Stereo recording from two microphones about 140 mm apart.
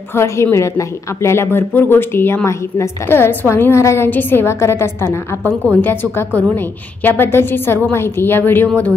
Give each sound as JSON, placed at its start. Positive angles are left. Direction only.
{"t": 0.1, "sound": "a woman's voice", "side_deg": 20}